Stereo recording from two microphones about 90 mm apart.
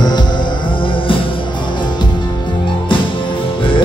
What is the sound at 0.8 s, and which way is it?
Music, 75° left (ahead or behind).